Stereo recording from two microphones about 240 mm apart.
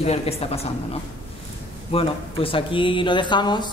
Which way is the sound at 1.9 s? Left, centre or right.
Left.